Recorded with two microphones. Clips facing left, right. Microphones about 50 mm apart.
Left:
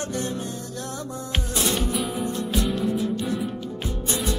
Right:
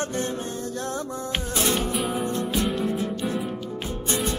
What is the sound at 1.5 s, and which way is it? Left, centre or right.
Music, right.